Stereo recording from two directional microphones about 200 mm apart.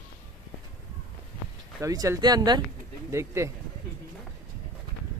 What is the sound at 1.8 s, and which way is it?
Speech, 15° right (ahead or behind).